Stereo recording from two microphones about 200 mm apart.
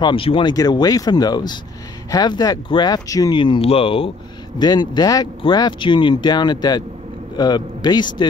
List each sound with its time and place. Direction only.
0.0 s speech: 25° left (ahead or behind)